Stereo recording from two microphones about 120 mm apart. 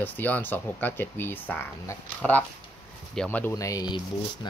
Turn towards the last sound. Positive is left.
turn(degrees=35)  # may be behind; listen again after turning